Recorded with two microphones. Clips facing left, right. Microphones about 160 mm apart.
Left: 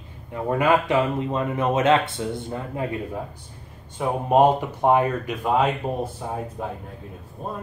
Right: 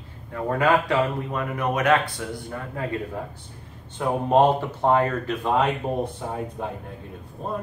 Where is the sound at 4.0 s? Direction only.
10° left (ahead or behind).